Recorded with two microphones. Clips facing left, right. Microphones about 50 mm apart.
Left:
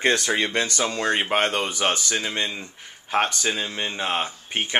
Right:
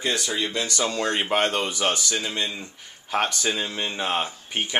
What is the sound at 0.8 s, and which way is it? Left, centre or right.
Speech, left.